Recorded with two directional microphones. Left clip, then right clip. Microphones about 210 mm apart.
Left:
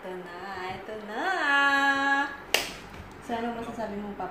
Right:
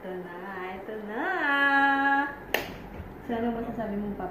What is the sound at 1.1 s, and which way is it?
Finger snapping, 5° left (ahead or behind).